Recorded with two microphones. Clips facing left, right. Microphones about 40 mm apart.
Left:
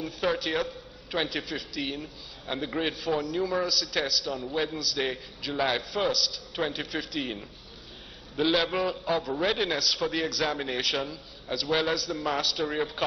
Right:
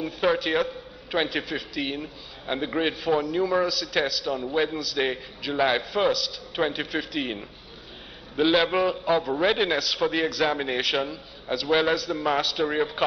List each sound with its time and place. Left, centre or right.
0.0 s a man's voice: centre
8.6 s speech: centre
9.5 s a man's voice: centre